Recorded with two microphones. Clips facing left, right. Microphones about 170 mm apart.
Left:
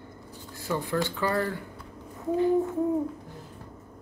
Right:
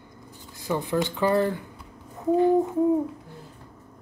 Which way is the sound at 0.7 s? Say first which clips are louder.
Right 3 dB; 20° right (ahead or behind).